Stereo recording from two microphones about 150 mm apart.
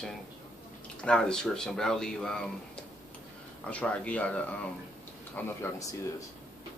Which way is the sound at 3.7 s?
10° left (ahead or behind).